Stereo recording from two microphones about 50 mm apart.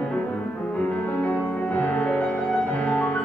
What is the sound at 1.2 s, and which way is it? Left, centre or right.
Music, left.